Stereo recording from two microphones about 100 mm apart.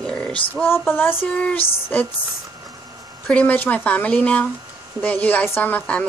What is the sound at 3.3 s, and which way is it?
Speech, 15° left (ahead or behind).